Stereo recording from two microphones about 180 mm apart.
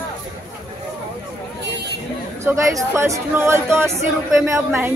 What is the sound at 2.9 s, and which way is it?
Speech, 15° right (ahead or behind).